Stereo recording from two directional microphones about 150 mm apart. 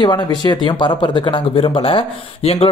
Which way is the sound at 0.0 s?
30° left (ahead or behind).